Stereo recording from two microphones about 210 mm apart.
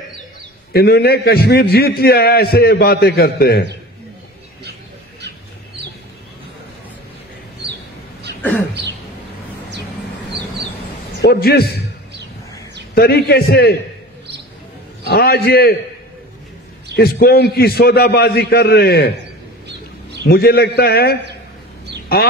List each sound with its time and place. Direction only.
0.7 s a man's voice: 50° left (ahead or behind)
11.1 s a man's voice: 50° left (ahead or behind)
12.9 s a man's voice: 50° left (ahead or behind)
15.0 s a man's voice: 50° left (ahead or behind)
16.9 s a man's voice: 45° left (ahead or behind)
20.2 s a man's voice: 45° left (ahead or behind)